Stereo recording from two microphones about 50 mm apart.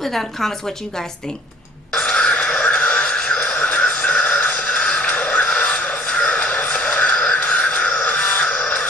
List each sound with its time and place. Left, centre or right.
0.0 s a woman's voice: centre
2.0 s music: left